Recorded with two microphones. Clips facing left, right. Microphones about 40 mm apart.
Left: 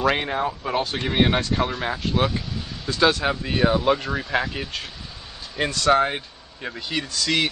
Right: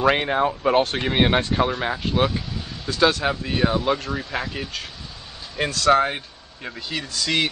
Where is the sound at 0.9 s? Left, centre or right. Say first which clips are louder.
Right 1 dB; centre.